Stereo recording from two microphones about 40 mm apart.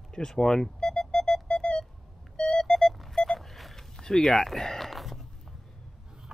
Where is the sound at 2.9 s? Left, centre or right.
Centre.